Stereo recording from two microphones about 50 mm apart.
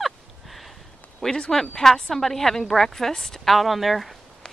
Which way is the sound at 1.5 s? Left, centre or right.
Centre.